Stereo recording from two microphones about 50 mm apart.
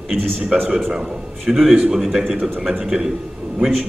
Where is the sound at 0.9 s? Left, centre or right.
Centre.